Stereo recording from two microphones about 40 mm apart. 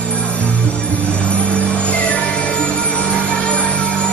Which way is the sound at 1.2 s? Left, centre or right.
Left.